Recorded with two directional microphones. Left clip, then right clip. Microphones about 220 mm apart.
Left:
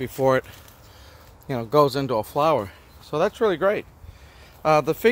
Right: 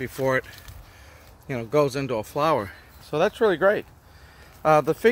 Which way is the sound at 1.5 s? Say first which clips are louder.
Left 3 dB; 10° left (ahead or behind).